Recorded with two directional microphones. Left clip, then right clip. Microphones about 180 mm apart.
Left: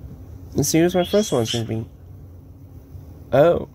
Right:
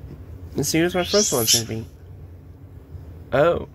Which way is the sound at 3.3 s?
30° left (ahead or behind).